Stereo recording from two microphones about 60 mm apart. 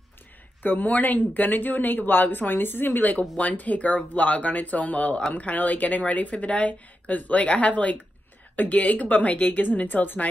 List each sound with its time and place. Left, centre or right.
0.6 s speech: left